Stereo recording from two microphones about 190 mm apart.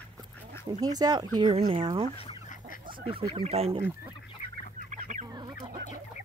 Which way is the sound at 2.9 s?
30° right (ahead or behind).